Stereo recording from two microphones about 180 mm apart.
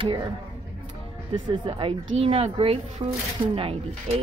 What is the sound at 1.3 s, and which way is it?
Speech, 25° right (ahead or behind).